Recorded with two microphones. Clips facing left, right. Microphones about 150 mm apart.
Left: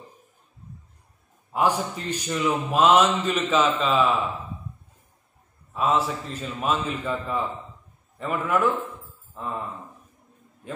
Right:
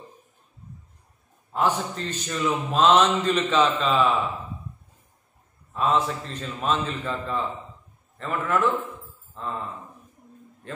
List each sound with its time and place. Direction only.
1.5 s a man's voice: 10° left (ahead or behind)
5.7 s a man's voice: 5° left (ahead or behind)
10.6 s a sound: 10° left (ahead or behind)